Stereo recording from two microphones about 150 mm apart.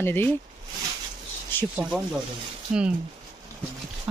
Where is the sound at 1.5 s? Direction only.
15° left (ahead or behind).